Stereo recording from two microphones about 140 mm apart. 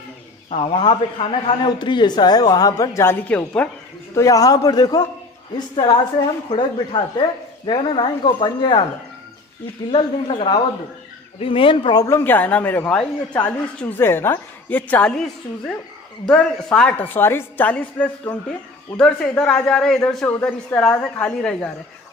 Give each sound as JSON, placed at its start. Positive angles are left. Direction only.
{"t": 0.5, "sound": "a man's voice", "side_deg": 40}
{"t": 4.1, "sound": "a man's voice", "side_deg": 20}
{"t": 6.5, "sound": "speech", "side_deg": 40}
{"t": 9.8, "sound": "speech", "side_deg": 35}
{"t": 16.7, "sound": "a man's voice", "side_deg": 10}